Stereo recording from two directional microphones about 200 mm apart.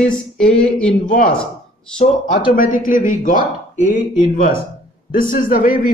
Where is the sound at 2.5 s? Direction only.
40° left (ahead or behind).